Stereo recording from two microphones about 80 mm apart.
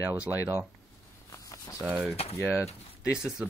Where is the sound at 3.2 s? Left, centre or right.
Centre.